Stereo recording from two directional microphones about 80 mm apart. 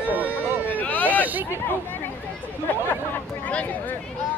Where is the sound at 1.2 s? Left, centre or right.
Right.